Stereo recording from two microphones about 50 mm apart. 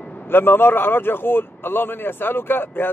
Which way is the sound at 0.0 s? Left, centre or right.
Left.